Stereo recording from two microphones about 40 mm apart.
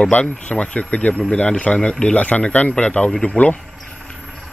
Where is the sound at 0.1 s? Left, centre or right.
Left.